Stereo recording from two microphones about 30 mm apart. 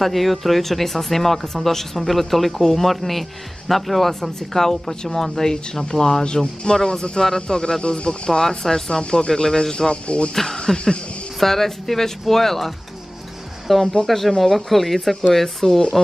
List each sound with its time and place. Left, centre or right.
0.0 s speech: centre
4.1 s speech: centre
9.0 s speech: left
9.3 s speech: left
10.0 s speech: left
10.3 s speech: centre